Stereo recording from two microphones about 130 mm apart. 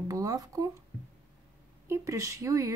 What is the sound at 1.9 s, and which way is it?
Speech, 25° right (ahead or behind).